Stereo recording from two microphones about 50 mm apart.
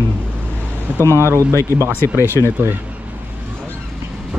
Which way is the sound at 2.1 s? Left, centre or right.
Right.